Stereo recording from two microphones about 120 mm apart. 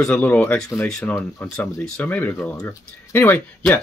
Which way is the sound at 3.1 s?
20° left (ahead or behind).